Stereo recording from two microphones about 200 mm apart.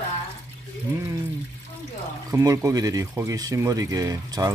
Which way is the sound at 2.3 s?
15° right (ahead or behind).